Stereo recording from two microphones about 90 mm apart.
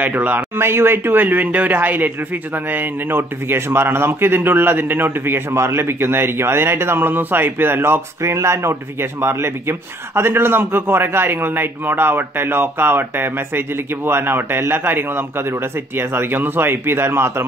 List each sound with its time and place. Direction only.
0.0 s a man's voice: 20° right (ahead or behind)